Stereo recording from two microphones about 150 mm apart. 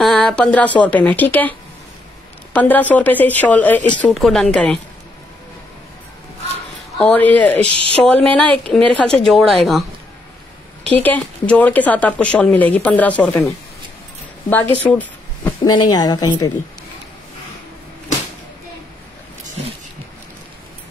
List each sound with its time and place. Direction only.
0.0 s speech: 5° left (ahead or behind)
2.5 s speech: 10° left (ahead or behind)
7.0 s speech: 10° left (ahead or behind)
10.9 s speech: 10° left (ahead or behind)
14.9 s a sound: 10° left (ahead or behind)
15.6 s a woman's voice: 30° left (ahead or behind)